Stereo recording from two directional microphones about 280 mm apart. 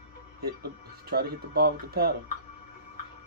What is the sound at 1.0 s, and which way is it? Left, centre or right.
Speech, right.